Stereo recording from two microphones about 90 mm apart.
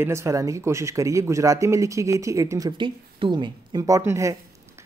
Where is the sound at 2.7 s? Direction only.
65° right (ahead or behind).